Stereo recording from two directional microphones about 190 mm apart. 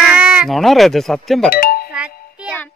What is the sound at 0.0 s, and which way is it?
Speech, 5° right (ahead or behind).